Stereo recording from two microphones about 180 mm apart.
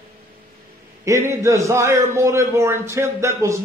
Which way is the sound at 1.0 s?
15° right (ahead or behind).